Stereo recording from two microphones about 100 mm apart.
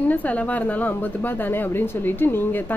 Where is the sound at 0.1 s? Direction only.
15° left (ahead or behind).